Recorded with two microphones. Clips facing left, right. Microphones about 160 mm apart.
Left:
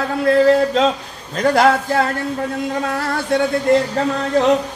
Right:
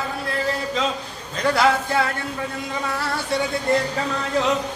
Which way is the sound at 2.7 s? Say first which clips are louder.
Left 5 dB; 55° left (ahead or behind).